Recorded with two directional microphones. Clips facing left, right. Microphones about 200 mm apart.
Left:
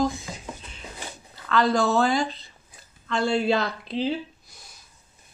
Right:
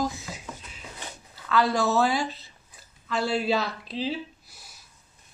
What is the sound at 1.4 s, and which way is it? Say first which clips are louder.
Speech: left 2 dB; 5° right (ahead or behind).